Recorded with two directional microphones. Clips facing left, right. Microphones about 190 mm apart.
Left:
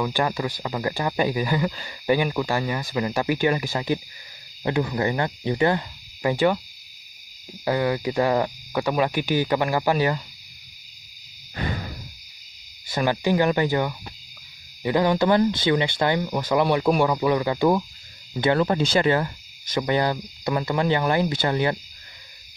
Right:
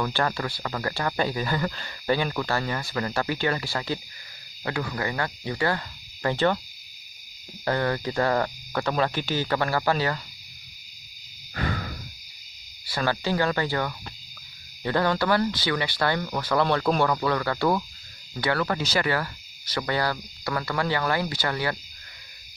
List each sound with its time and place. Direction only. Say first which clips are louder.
0.0 s speech: left 2 dB; 15° left (ahead or behind)
7.6 s speech: left 3 dB; 10° left (ahead or behind)
12.9 s speech: left 4 dB; 15° left (ahead or behind)